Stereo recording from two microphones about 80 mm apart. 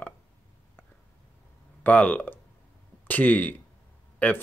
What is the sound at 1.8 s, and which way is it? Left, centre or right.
Speech, centre.